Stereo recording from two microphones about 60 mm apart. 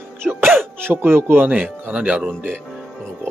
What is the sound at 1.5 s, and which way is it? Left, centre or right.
Speech, right.